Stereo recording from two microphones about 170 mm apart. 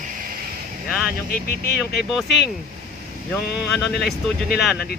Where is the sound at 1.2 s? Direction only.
65° left (ahead or behind).